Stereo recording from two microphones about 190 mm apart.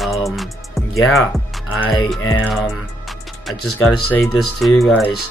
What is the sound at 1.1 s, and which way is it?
Speech, centre (ahead or behind).